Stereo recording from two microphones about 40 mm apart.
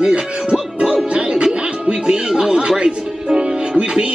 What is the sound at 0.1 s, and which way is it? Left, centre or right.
Music, right.